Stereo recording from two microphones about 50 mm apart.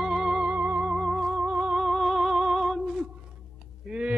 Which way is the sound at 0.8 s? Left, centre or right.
Centre.